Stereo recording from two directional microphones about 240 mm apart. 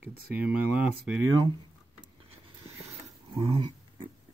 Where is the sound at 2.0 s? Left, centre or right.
Right.